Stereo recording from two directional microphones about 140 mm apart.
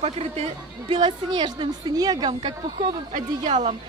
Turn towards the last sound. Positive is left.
turn(degrees=-60)  # may be behind; listen again after turning